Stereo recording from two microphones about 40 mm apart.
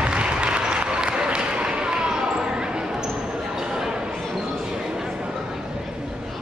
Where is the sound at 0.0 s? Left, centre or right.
Right.